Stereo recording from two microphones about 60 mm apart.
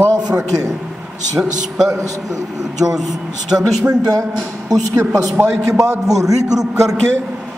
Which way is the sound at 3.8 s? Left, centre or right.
Right.